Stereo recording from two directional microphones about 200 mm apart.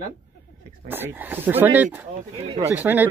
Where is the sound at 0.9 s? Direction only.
10° right (ahead or behind).